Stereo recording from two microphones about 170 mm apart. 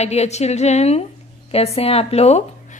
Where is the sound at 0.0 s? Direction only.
40° left (ahead or behind).